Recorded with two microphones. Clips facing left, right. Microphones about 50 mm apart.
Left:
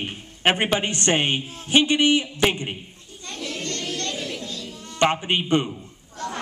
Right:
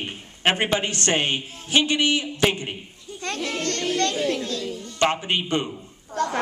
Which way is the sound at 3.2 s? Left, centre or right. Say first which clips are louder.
Right 5 dB; right.